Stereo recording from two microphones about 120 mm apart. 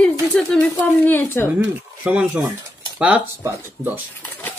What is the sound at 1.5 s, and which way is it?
Speech, 10° right (ahead or behind).